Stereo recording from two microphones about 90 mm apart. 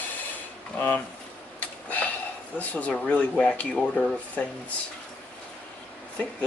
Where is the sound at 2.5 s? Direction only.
15° left (ahead or behind).